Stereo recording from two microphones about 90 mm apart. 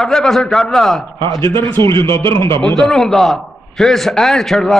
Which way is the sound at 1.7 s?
30° left (ahead or behind).